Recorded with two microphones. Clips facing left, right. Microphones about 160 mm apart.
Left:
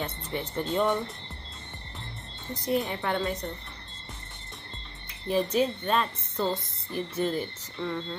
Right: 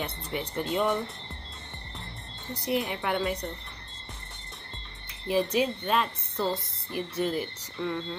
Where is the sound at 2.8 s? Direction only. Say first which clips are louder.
Even; 15° right (ahead or behind).